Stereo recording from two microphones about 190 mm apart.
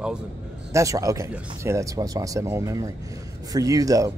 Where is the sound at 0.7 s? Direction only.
15° right (ahead or behind).